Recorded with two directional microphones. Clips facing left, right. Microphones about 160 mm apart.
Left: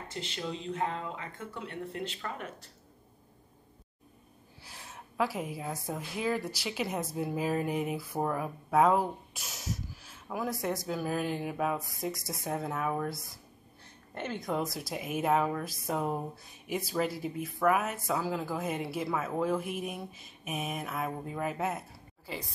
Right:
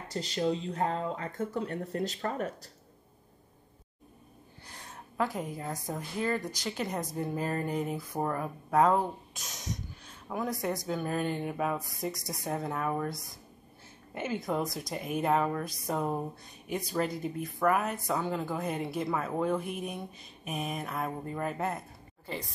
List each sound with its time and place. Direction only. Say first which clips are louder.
0.1 s speech: right 8 dB; 35° right (ahead or behind)
4.6 s a woman's voice: even; 5° left (ahead or behind)